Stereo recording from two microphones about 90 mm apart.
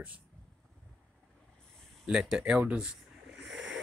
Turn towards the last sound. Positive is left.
turn(degrees=-10)  # may be behind; listen again after turning